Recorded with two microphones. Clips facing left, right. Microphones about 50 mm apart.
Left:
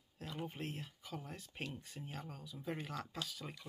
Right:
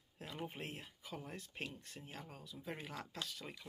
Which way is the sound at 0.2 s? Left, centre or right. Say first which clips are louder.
Left 2 dB; centre.